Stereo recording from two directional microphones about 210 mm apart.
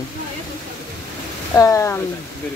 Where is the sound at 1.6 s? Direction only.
15° left (ahead or behind).